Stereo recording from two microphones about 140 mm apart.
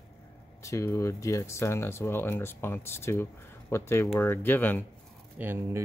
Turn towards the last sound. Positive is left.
turn(degrees=-10)  # may be behind; listen again after turning